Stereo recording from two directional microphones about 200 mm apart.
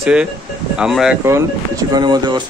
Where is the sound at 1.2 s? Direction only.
15° right (ahead or behind).